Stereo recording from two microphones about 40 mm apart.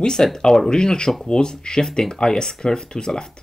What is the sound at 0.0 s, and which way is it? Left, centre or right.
Speech, centre.